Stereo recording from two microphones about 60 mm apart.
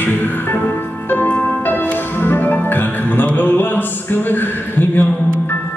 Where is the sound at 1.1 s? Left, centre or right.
Left.